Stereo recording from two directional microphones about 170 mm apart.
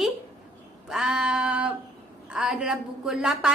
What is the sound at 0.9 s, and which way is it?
Female singing, 5° right (ahead or behind).